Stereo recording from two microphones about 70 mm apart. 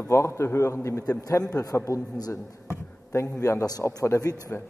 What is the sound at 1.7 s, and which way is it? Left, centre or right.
A man's voice, left.